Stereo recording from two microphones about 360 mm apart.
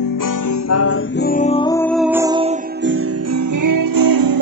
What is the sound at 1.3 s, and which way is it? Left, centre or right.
Music, centre.